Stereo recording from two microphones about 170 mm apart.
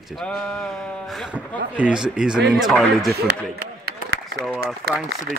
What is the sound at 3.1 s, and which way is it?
Speech, 70° right (ahead or behind).